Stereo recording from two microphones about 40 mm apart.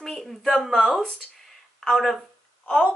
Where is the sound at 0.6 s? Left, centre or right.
Centre.